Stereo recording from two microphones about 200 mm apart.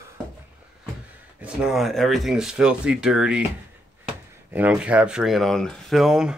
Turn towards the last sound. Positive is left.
turn(degrees=0)  # may be behind; listen again after turning